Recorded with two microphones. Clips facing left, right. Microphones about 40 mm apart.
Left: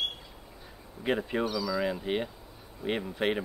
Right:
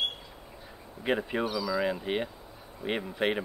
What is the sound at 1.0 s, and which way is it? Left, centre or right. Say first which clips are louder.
Speech: even; centre.